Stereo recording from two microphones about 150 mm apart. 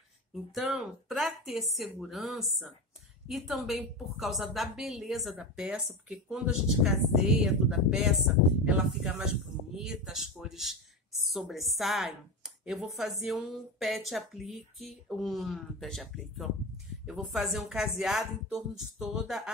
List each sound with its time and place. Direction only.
0.3 s speech: centre (ahead or behind)